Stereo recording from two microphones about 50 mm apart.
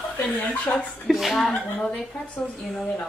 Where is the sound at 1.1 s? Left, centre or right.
Centre.